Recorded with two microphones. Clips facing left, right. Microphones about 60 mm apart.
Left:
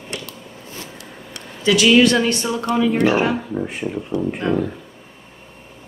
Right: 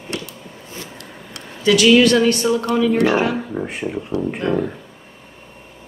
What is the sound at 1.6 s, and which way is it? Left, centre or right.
A woman's voice, left.